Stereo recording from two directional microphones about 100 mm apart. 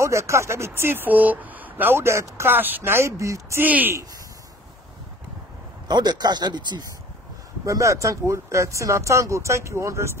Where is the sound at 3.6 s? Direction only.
20° right (ahead or behind).